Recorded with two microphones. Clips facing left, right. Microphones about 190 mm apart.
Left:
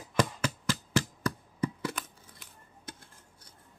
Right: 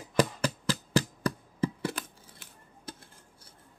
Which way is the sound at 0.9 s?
30° right (ahead or behind).